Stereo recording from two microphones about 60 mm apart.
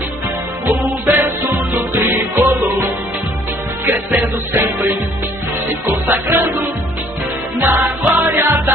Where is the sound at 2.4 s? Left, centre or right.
Right.